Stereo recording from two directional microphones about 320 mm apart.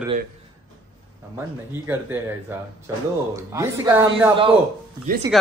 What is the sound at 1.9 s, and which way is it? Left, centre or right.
A man's voice, centre.